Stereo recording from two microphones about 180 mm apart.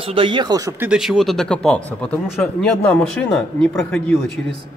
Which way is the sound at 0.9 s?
5° right (ahead or behind).